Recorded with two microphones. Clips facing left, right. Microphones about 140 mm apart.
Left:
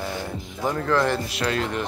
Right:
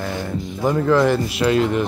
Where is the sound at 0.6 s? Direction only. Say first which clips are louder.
Right 6 dB; 10° right (ahead or behind).